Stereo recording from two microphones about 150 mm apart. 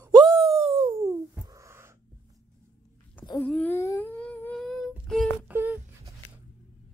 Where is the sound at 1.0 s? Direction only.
20° right (ahead or behind).